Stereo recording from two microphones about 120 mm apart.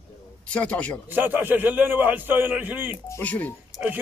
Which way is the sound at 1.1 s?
15° right (ahead or behind).